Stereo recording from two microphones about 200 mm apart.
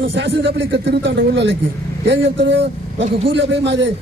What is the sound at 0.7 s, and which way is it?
A man's voice, 55° right (ahead or behind).